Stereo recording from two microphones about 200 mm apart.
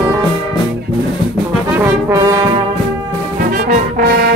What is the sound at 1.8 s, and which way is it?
Brass instrument, 10° right (ahead or behind).